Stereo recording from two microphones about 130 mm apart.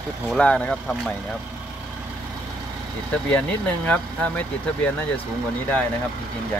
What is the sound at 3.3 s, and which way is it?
Speech, 10° left (ahead or behind).